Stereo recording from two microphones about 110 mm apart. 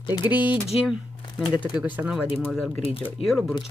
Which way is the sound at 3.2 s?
Centre (ahead or behind).